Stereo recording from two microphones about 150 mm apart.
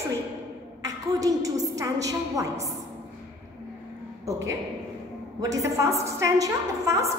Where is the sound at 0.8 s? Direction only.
25° right (ahead or behind).